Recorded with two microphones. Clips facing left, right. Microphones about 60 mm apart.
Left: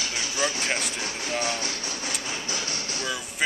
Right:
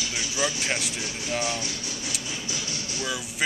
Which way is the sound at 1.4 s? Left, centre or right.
Left.